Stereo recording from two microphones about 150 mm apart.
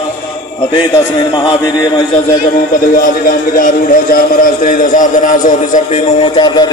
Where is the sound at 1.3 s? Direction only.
30° left (ahead or behind).